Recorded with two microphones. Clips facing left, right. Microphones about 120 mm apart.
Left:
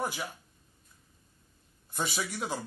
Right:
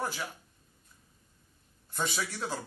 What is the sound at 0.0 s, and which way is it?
Speech, 15° left (ahead or behind).